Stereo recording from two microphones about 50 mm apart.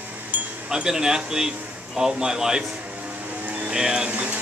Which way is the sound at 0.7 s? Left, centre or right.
Centre.